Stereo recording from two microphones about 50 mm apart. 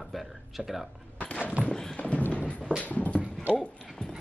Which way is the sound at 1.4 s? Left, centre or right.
Right.